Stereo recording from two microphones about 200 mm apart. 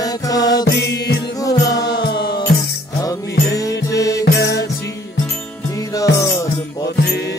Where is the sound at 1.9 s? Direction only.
60° left (ahead or behind).